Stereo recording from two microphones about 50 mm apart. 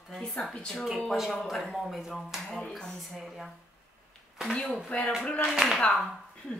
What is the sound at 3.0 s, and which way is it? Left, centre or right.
Speech, centre.